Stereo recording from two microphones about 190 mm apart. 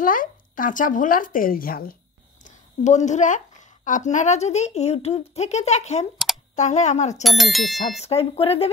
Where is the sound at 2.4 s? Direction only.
40° left (ahead or behind).